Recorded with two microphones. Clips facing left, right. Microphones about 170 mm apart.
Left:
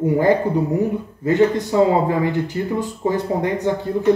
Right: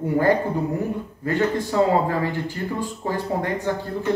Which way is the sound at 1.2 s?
20° left (ahead or behind).